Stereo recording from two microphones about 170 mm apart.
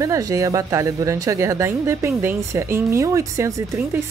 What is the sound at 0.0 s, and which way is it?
Speech, 20° right (ahead or behind).